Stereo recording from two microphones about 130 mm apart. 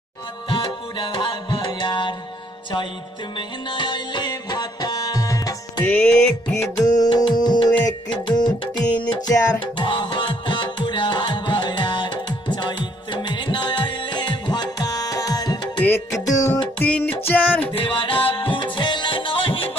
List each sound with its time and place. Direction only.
0.5 s music: 40° left (ahead or behind)
3.3 s music: 40° left (ahead or behind)
5.9 s music: 10° left (ahead or behind)
6.5 s music: 20° left (ahead or behind)
7.0 s music: 35° left (ahead or behind)
9.6 s music: 40° left (ahead or behind)
15.8 s music: 15° left (ahead or behind)
16.7 s music: 10° left (ahead or behind)
17.7 s music: 40° left (ahead or behind)